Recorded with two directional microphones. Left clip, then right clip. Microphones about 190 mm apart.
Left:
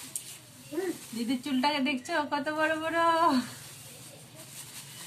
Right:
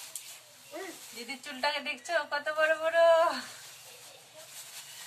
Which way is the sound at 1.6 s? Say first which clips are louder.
Left 2 dB; 15° right (ahead or behind).